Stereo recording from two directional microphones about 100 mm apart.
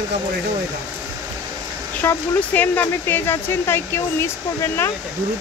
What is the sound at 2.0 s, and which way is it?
Speech, 20° left (ahead or behind).